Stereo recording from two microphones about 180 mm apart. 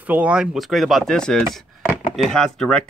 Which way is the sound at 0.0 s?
10° right (ahead or behind).